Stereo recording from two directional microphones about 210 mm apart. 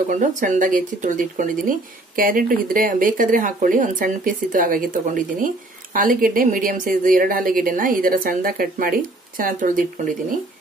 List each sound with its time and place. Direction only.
0.1 s a woman's voice: 35° right (ahead or behind)